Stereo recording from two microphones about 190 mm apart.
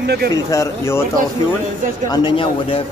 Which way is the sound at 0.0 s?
55° right (ahead or behind).